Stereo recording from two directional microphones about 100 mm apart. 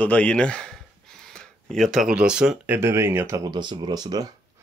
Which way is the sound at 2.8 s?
25° right (ahead or behind).